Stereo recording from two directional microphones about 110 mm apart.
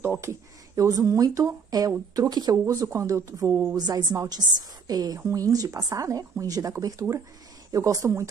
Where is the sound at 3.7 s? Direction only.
40° right (ahead or behind).